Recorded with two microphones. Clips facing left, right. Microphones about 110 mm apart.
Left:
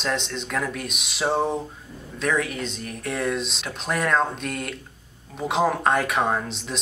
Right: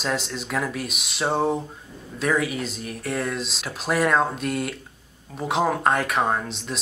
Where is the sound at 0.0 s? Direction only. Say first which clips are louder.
Even; 5° right (ahead or behind).